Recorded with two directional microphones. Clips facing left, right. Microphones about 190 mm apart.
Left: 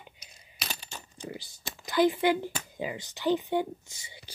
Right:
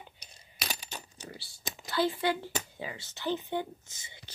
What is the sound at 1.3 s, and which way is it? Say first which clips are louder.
Typing: left 7 dB; 15° left (ahead or behind).